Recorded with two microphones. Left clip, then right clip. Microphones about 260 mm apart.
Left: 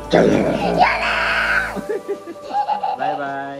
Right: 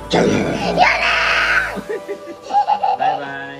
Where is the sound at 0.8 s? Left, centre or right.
Centre.